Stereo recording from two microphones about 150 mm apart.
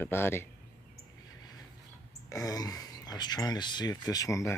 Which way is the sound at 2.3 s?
25° left (ahead or behind).